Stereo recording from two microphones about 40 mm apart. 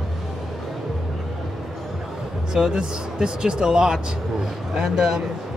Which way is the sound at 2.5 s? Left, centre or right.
Centre.